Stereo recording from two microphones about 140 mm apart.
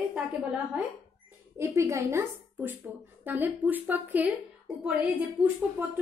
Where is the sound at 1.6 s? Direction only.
20° right (ahead or behind).